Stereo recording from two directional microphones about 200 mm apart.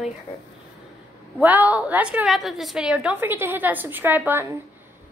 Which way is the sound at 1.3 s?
10° right (ahead or behind).